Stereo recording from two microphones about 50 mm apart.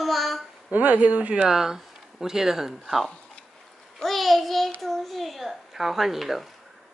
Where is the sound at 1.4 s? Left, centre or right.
Centre.